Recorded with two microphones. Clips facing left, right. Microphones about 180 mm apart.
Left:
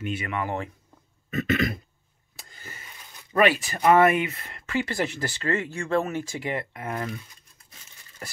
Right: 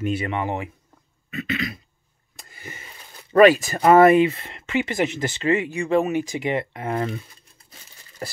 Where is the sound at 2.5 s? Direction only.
20° right (ahead or behind).